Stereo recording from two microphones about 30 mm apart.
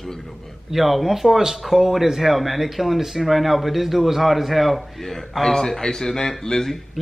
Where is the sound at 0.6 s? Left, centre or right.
Centre.